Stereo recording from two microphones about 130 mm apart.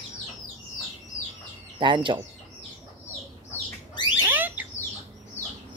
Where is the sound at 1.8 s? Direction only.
40° right (ahead or behind).